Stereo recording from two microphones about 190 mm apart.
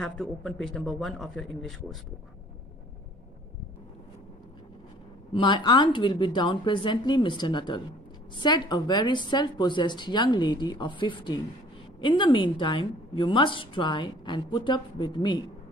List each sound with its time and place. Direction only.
0.0 s speech: centre (ahead or behind)
5.3 s a woman's voice: 25° left (ahead or behind)